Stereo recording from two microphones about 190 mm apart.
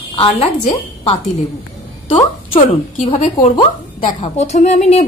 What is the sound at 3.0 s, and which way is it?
Speech, 40° left (ahead or behind).